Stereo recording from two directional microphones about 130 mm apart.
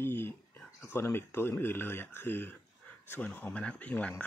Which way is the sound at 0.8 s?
20° left (ahead or behind).